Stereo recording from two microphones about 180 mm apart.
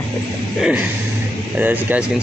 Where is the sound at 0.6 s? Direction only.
5° right (ahead or behind).